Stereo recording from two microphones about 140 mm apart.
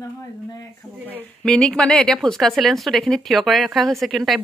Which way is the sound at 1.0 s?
10° left (ahead or behind).